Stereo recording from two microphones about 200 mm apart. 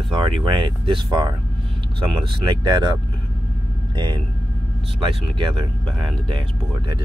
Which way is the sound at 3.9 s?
20° right (ahead or behind).